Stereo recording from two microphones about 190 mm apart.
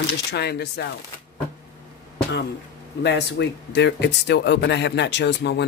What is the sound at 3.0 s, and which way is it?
Speech, 65° left (ahead or behind).